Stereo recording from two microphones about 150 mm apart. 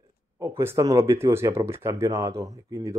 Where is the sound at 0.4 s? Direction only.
20° right (ahead or behind).